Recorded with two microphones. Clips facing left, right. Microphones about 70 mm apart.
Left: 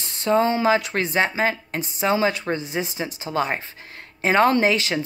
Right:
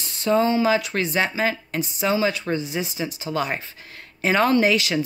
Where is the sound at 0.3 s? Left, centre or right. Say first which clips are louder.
Even; left.